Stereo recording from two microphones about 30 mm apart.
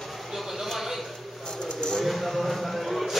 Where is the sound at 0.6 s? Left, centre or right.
Centre.